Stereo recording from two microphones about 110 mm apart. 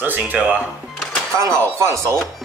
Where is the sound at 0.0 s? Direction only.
15° right (ahead or behind).